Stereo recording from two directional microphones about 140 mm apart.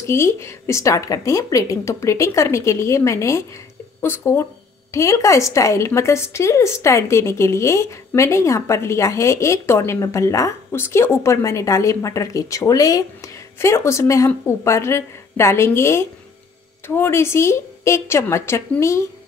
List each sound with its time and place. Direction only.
0.0 s a woman's voice: 20° left (ahead or behind)